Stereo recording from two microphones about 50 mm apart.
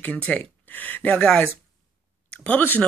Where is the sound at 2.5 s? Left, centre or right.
Left.